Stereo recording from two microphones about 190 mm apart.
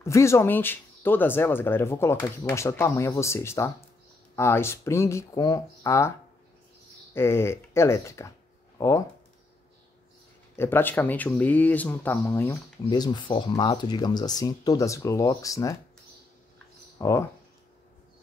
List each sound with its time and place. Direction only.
0.0 s speech: 15° left (ahead or behind)
7.2 s speech: 15° left (ahead or behind)
10.5 s speech: 10° left (ahead or behind)
12.8 s speech: 20° left (ahead or behind)
17.0 s speech: 15° left (ahead or behind)